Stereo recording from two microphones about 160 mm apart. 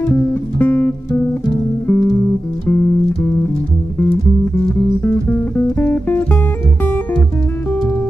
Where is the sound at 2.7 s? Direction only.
15° left (ahead or behind).